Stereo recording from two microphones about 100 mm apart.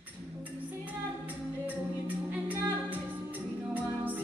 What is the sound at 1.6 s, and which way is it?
Music, 15° right (ahead or behind).